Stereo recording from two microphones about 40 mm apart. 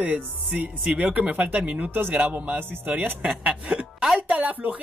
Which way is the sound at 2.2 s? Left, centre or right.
Right.